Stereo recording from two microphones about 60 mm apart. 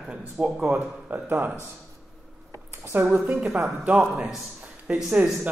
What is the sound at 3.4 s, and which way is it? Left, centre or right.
Speech, centre.